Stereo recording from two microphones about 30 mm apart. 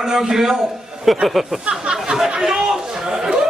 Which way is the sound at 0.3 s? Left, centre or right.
Centre.